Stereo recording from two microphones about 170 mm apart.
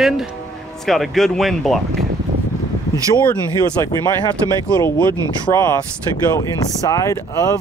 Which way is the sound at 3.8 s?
15° left (ahead or behind).